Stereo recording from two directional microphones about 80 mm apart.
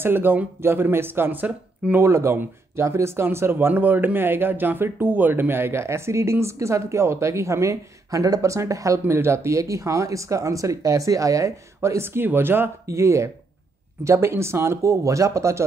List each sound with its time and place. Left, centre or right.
0.0 s speech: right
2.0 s speech: right